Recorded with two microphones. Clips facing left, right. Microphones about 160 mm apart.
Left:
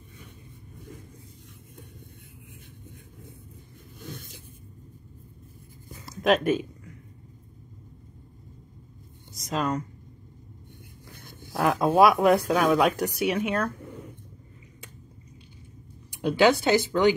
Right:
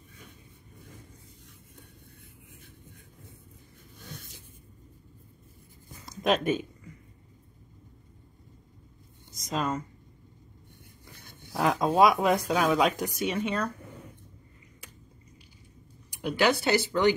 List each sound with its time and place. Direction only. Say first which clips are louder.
6.0 s speech: left 3 dB; 5° left (ahead or behind)
9.5 s speech: left 2 dB; centre (ahead or behind)
11.5 s speech: left 3 dB; centre (ahead or behind)
16.3 s speech: left 4 dB; 20° left (ahead or behind)